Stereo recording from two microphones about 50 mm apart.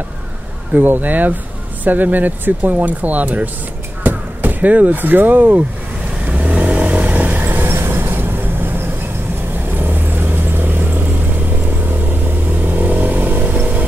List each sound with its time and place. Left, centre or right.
0.7 s speech: right
6.2 s vehicle: right
9.8 s vehicle: right